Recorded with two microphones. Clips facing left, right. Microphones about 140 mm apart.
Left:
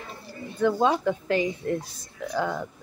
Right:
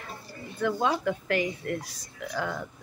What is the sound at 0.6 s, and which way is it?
Speech, 25° left (ahead or behind).